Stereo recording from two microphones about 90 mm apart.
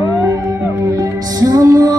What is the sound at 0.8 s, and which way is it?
Music, 40° right (ahead or behind).